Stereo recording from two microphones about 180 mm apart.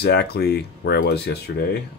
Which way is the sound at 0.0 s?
65° left (ahead or behind).